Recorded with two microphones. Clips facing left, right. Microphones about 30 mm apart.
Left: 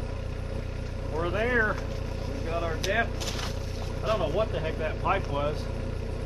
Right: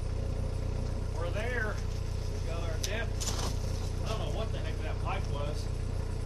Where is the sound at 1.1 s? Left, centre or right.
Left.